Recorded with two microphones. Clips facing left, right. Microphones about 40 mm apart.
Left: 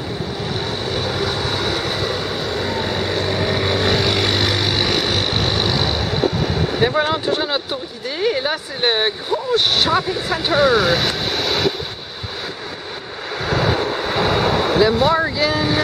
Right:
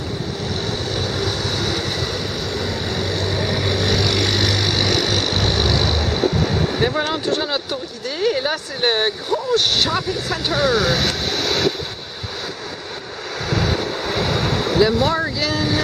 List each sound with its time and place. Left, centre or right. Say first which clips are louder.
0.9 s vehicle: left 3 dB; centre
13.5 s vehicle: left 3 dB; left
15.0 s speech: left 3 dB; centre